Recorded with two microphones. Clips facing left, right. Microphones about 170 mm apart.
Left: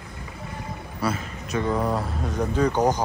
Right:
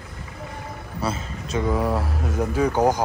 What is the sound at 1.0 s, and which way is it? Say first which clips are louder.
Speech: even; 25° right (ahead or behind).